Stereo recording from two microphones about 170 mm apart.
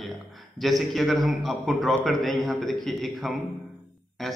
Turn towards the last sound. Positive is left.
turn(degrees=0)  # may be behind; listen again after turning